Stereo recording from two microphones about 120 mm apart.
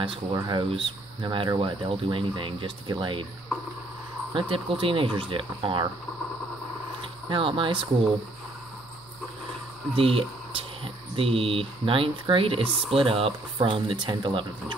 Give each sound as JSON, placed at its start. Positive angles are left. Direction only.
{"t": 0.3, "sound": "speech", "side_deg": -35}
{"t": 0.7, "sound": "speech", "side_deg": -50}
{"t": 4.3, "sound": "speech", "side_deg": -45}
{"t": 7.2, "sound": "speech", "side_deg": -45}
{"t": 9.9, "sound": "speech", "side_deg": -50}